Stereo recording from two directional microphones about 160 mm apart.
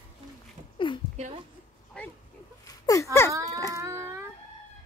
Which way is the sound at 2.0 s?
5° left (ahead or behind).